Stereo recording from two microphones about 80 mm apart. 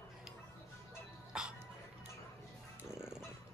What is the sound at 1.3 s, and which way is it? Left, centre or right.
Music, centre.